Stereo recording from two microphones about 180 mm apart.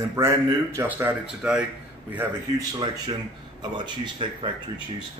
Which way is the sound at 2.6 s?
25° right (ahead or behind).